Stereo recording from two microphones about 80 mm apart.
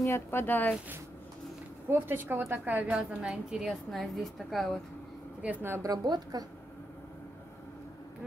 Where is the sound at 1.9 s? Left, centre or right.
Right.